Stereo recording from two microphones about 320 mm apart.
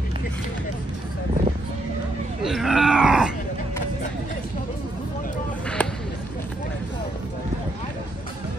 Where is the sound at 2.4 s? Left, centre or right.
Centre.